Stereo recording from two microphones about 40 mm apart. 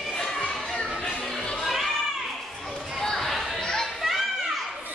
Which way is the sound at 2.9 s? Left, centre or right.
Centre.